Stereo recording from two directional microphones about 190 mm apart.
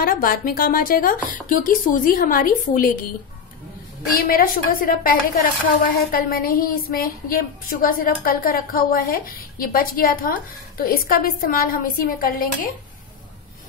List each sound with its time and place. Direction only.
0.0 s speech: 50° left (ahead or behind)
4.3 s speech: 50° left (ahead or behind)